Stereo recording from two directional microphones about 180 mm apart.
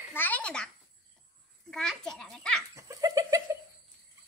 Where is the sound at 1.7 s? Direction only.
5° left (ahead or behind).